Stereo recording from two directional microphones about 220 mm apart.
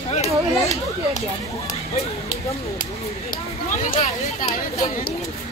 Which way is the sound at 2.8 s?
35° left (ahead or behind).